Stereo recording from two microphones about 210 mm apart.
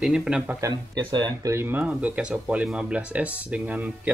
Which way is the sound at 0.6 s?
15° right (ahead or behind).